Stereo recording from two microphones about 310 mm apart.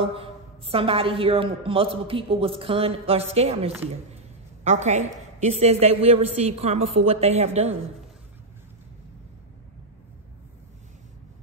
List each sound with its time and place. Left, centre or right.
0.0 s a man's voice: centre